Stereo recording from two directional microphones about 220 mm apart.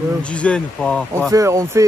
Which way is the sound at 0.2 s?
5° left (ahead or behind).